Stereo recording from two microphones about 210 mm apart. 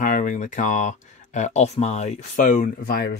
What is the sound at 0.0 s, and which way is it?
Speech, 40° left (ahead or behind).